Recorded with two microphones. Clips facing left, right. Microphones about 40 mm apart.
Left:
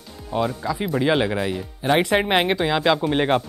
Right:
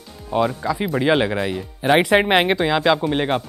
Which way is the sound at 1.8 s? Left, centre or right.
Centre.